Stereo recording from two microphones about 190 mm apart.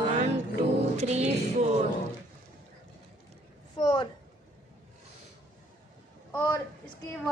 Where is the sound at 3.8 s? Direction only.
25° left (ahead or behind).